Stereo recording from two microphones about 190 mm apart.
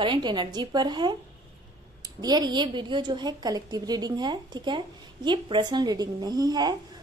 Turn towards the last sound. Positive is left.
turn(degrees=-20)  # may be behind; listen again after turning